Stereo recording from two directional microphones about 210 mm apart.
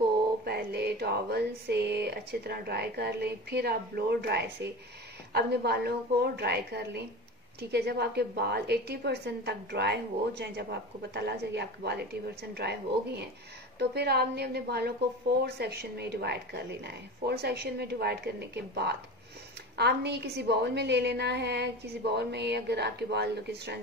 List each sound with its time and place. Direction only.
0.5 s a woman's voice: 50° right (ahead or behind)